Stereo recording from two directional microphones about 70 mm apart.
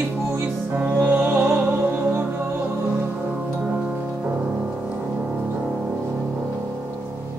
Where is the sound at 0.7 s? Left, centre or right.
Right.